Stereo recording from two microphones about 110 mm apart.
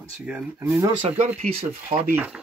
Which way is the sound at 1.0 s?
85° right.